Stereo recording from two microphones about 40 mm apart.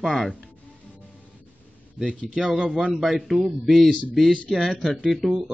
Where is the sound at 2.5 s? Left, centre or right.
Right.